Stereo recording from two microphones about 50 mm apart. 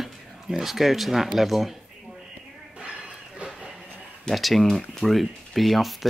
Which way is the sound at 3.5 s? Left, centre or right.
Centre.